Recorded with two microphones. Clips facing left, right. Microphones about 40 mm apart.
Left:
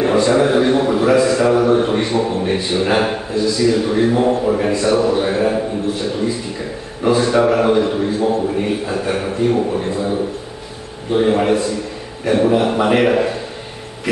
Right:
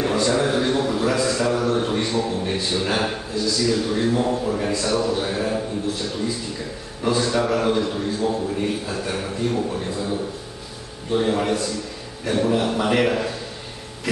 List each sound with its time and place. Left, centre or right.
0.0 s a man's voice: left